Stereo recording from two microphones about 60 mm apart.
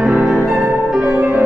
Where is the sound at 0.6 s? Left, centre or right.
Right.